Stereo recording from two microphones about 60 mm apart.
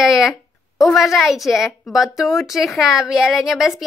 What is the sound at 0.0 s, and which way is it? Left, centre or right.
A woman's voice, centre.